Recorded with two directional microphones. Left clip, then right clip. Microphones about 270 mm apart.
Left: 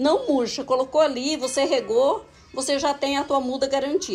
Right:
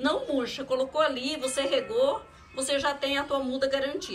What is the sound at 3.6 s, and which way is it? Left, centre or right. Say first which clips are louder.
Speech: left 5 dB; centre.